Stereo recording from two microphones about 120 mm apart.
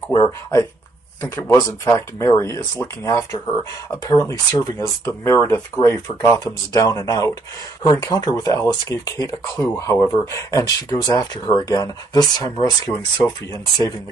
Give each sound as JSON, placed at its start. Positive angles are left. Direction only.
{"t": 0.1, "sound": "speech", "side_deg": 35}
{"t": 1.2, "sound": "speech", "side_deg": 20}